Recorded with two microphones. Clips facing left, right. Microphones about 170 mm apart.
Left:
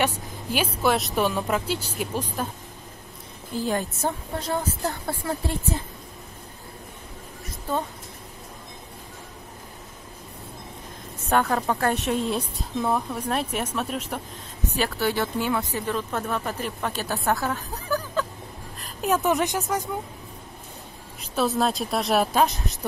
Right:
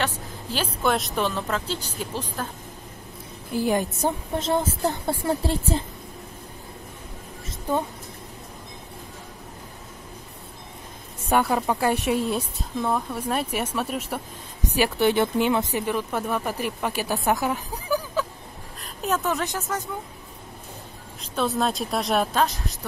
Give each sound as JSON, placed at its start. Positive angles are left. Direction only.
{"t": 0.0, "sound": "a sound", "side_deg": 10}
{"t": 0.8, "sound": "speech", "side_deg": 0}
{"t": 3.5, "sound": "a woman's voice", "side_deg": -15}
{"t": 7.4, "sound": "a sound", "side_deg": -15}
{"t": 11.2, "sound": "a woman's voice", "side_deg": -10}
{"t": 14.8, "sound": "a woman's voice", "side_deg": -20}
{"t": 19.0, "sound": "speech", "side_deg": 15}
{"t": 21.2, "sound": "speech", "side_deg": 5}